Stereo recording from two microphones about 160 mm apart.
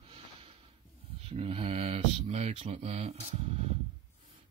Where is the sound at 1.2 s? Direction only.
35° right (ahead or behind).